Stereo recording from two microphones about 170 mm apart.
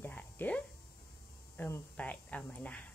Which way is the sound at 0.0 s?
10° left (ahead or behind).